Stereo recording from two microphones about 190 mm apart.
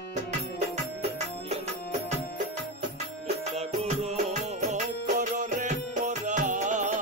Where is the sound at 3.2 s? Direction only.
35° right (ahead or behind).